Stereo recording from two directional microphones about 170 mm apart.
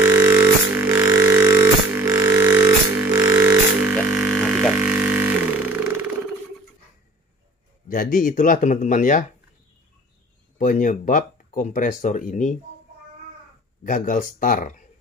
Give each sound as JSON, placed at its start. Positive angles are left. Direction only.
{"t": 0.0, "sound": "music", "side_deg": -15}
{"t": 3.9, "sound": "a sound", "side_deg": -5}
{"t": 7.9, "sound": "speech", "side_deg": 55}
{"t": 10.6, "sound": "speech", "side_deg": 50}
{"t": 13.8, "sound": "speech", "side_deg": 50}